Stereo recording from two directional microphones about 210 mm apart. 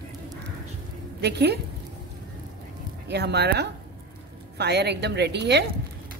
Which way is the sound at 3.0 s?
50° right (ahead or behind).